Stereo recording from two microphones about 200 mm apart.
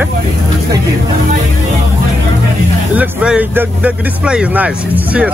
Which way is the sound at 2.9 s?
5° right (ahead or behind).